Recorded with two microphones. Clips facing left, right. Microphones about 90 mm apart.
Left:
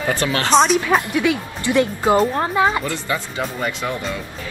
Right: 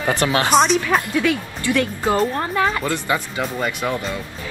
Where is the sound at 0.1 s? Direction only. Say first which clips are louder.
Right 3 dB; 20° right (ahead or behind).